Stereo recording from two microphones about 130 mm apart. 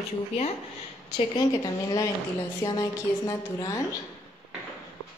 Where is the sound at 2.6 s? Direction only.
25° left (ahead or behind).